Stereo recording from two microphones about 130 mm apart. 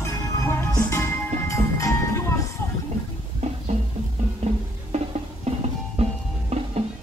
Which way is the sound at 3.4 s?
55° right (ahead or behind).